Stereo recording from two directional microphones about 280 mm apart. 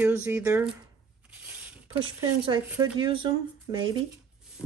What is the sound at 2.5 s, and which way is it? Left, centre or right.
Speech, centre.